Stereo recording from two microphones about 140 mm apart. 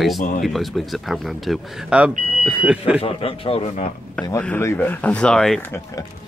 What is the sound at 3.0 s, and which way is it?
Speech, 45° left (ahead or behind).